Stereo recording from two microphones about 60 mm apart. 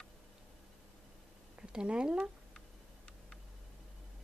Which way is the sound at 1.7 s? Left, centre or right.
Centre.